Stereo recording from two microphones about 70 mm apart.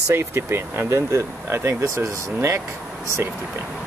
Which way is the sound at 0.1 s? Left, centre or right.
Right.